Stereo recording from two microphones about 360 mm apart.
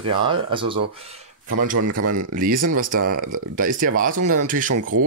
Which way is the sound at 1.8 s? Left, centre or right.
Right.